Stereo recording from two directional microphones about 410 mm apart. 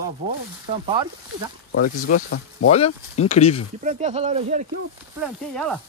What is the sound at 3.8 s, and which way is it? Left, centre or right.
Speech, centre.